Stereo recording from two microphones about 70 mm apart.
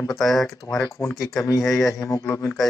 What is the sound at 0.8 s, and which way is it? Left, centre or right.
Speech, left.